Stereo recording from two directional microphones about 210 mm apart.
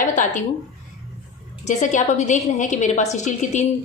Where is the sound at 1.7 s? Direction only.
35° left (ahead or behind).